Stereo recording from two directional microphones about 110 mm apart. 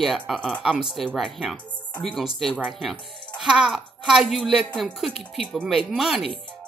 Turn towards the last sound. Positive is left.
turn(degrees=-5)  # may be behind; listen again after turning